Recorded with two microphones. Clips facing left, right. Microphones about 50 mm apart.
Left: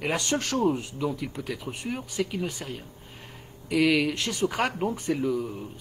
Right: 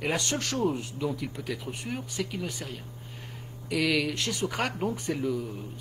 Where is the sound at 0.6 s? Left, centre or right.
Centre.